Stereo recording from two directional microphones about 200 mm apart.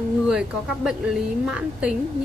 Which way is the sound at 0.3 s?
5° right (ahead or behind).